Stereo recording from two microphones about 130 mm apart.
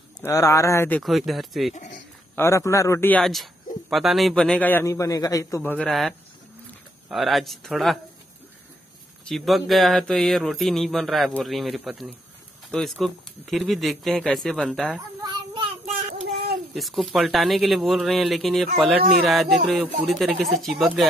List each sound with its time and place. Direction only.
0.2 s speech: 25° left (ahead or behind)
1.0 s speech: centre (ahead or behind)
2.3 s speech: 20° left (ahead or behind)
3.2 s a man's voice: centre (ahead or behind); by 5.6 s 25° left (ahead or behind)
5.6 s a man's voice: 15° left (ahead or behind)
5.9 s speech: centre (ahead or behind)
9.3 s speech: centre (ahead or behind)
15.2 s child singing: 40° right (ahead or behind)
16.3 s speech: centre (ahead or behind)